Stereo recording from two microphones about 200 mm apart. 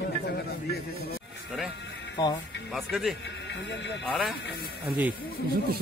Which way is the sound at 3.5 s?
60° left (ahead or behind).